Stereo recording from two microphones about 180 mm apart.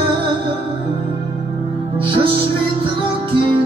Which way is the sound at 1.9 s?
30° right (ahead or behind).